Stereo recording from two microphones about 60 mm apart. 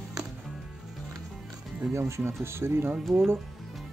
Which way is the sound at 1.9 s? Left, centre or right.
Right.